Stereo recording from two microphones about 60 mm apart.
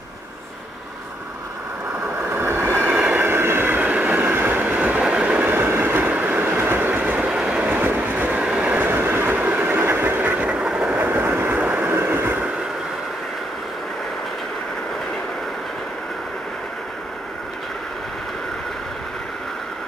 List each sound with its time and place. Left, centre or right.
2.4 s vehicle: right
2.9 s train: centre
3.2 s vehicle: right
3.8 s vehicle: right
4.4 s train: right
5.5 s train: right
7.2 s train: centre
7.7 s vehicle: right
8.4 s train: centre
8.7 s vehicle: right; by 11.0 s centre
11.0 s train: right